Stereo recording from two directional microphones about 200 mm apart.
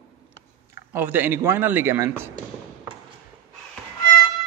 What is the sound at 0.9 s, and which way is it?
A man's voice, 10° right (ahead or behind).